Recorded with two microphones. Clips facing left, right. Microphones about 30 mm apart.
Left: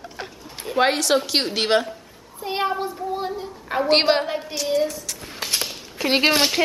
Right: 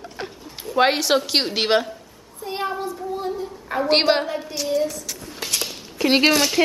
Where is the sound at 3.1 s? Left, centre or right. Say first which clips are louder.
Even; left.